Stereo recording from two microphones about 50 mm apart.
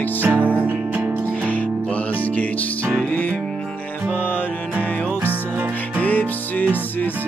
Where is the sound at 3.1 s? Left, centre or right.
Left.